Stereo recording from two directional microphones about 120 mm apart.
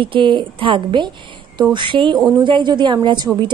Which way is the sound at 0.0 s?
45° right (ahead or behind).